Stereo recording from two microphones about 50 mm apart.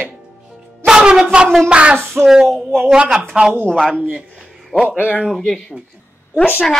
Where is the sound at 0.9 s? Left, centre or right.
Centre.